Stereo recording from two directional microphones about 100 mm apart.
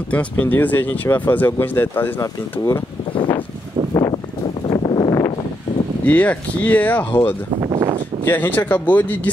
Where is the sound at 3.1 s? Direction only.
55° left (ahead or behind).